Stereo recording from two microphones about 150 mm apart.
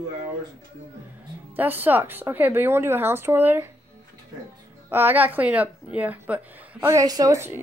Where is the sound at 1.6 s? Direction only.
10° right (ahead or behind).